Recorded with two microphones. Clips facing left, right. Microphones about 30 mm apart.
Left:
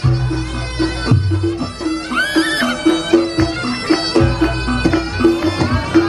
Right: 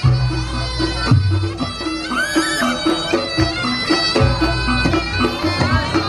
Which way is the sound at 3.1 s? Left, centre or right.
Right.